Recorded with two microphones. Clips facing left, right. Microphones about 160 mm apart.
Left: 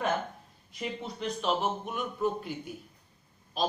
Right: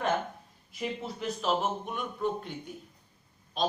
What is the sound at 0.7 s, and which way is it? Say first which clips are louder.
Speech: right 1 dB; 5° right (ahead or behind).